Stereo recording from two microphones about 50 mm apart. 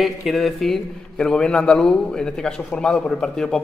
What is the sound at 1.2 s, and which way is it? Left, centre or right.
A man's voice, centre.